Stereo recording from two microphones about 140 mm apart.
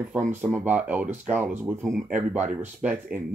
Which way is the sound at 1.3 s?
15° right (ahead or behind).